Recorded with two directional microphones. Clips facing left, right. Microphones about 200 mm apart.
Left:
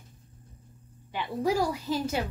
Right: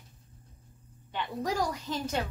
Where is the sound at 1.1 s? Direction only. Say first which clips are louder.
Left 5 dB; 5° left (ahead or behind).